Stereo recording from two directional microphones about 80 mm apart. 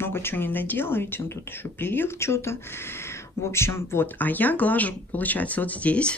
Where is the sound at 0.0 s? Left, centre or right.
Left.